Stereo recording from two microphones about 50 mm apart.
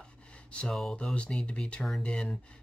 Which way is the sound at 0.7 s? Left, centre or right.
Centre.